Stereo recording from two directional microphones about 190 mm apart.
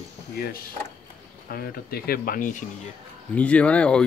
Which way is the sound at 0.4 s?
50° left (ahead or behind).